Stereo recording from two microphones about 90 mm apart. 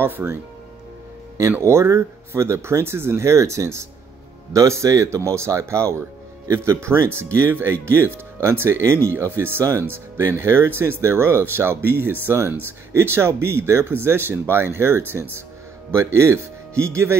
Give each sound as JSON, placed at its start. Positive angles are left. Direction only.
{"t": 0.0, "sound": "speech", "side_deg": -25}
{"t": 1.6, "sound": "speech", "side_deg": -30}